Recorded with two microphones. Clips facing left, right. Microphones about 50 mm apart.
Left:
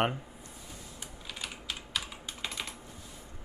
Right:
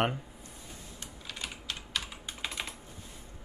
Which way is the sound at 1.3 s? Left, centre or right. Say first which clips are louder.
Even; centre.